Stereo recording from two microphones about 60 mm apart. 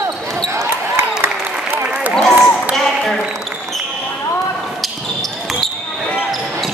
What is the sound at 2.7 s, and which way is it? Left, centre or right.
Ping, centre.